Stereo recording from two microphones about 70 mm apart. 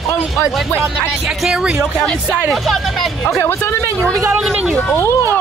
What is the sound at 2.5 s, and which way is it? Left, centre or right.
Speech, centre.